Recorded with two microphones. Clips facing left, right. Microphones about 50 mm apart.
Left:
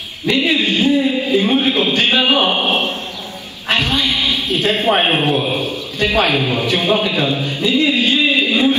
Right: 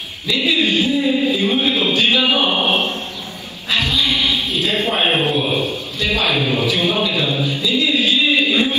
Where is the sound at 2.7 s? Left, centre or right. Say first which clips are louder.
Left 1 dB; left.